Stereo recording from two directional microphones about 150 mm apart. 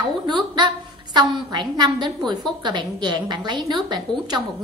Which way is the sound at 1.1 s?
30° right (ahead or behind).